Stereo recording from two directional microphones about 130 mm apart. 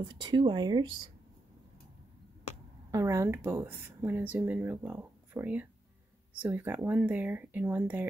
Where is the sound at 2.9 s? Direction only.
20° right (ahead or behind).